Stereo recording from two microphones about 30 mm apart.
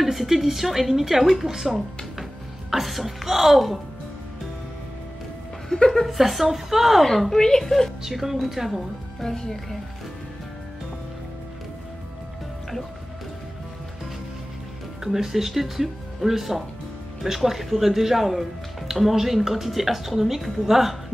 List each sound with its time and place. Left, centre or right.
0.0 s speech: centre
2.7 s a woman's voice: centre
5.7 s speech: centre
6.0 s speech: centre
7.3 s a woman's voice: centre
7.6 s speech: centre
8.0 s speech: centre
9.2 s speech: centre
15.0 s speech: centre